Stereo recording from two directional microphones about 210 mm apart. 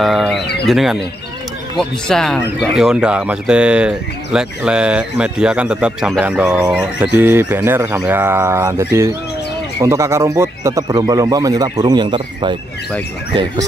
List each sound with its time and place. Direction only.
0.0 s speech: centre (ahead or behind); by 13.7 s 25° right (ahead or behind)